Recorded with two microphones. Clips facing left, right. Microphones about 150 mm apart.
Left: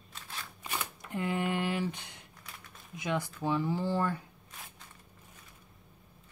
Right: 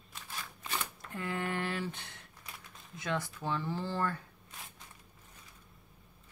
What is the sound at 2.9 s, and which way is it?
Speech, 15° left (ahead or behind).